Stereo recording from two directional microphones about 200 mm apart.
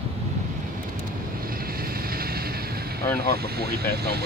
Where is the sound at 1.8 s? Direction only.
45° right (ahead or behind).